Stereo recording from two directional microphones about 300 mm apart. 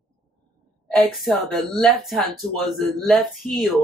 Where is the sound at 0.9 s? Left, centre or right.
Centre.